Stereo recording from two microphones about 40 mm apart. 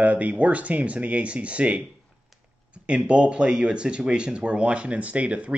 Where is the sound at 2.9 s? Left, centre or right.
Right.